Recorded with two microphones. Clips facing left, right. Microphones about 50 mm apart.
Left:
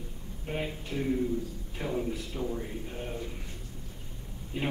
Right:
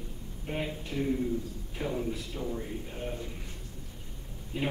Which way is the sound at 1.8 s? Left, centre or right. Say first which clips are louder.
Left 1 dB; centre.